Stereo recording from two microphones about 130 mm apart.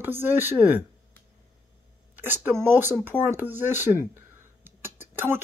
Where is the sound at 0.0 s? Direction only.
15° right (ahead or behind).